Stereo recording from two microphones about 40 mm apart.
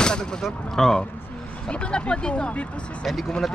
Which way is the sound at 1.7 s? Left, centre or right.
Left.